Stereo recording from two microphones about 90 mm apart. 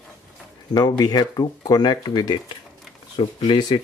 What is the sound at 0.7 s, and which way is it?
Speech, 45° left (ahead or behind).